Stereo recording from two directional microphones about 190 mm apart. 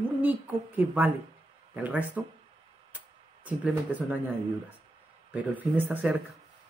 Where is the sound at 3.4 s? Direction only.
10° right (ahead or behind).